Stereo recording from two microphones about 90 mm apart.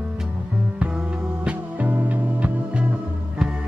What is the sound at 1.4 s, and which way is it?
Music, 15° right (ahead or behind).